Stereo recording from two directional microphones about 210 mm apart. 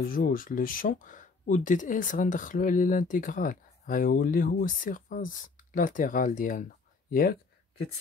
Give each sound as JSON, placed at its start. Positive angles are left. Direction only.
{"t": 0.0, "sound": "speech", "side_deg": 45}